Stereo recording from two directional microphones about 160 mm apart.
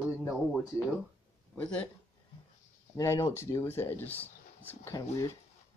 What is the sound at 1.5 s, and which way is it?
Speech, 5° left (ahead or behind).